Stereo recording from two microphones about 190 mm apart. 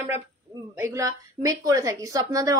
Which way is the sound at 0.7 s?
15° right (ahead or behind).